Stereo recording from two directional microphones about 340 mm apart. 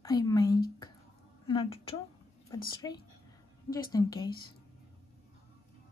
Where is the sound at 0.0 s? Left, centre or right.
Centre.